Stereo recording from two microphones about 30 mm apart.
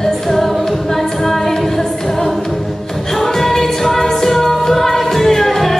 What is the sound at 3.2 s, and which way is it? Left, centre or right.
Music, centre.